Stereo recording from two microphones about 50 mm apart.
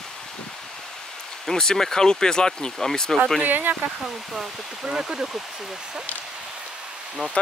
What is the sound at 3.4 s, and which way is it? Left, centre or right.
Speech, right.